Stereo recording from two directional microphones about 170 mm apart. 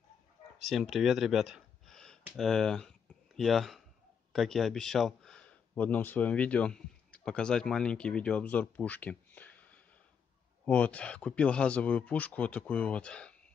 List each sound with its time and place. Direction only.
0.6 s a man's voice: centre (ahead or behind)